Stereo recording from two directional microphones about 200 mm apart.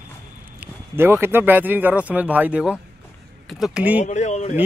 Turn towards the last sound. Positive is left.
turn(degrees=35)  # may be behind; listen again after turning